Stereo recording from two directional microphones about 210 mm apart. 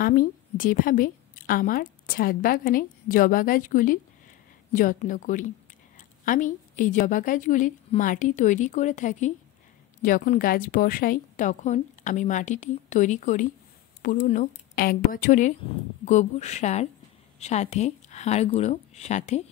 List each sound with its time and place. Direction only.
0.0 s a woman's voice: 40° left (ahead or behind)